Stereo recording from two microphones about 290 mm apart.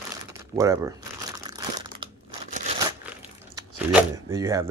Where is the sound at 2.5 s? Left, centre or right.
Right.